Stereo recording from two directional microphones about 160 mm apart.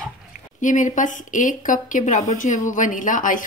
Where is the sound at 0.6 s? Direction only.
50° left (ahead or behind).